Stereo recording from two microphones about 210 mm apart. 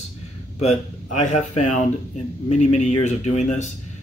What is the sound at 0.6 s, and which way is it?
Speech, 35° left (ahead or behind).